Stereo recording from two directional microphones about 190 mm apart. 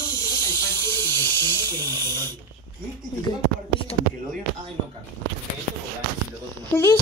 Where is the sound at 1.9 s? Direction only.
20° right (ahead or behind).